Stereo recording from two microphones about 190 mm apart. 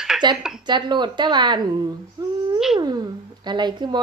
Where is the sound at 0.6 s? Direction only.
25° right (ahead or behind).